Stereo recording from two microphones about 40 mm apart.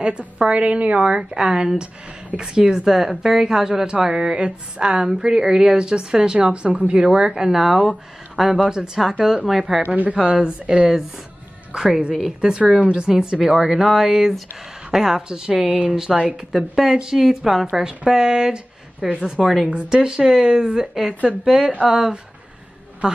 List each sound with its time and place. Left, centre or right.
0.0 s a woman's voice: right; by 8.6 s centre
8.6 s a woman's voice: centre
9.2 s speech: centre
10.2 s a woman's voice: right
11.7 s a woman's voice: centre
12.4 s a woman's voice: right
13.1 s speech: centre
21.1 s speech: right
21.5 s speech: centre